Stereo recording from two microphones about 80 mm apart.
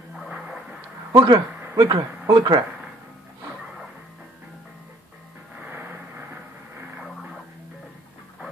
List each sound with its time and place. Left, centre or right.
0.3 s a sound: centre
1.1 s speech: right
1.8 s speech: right
5.7 s vehicle: right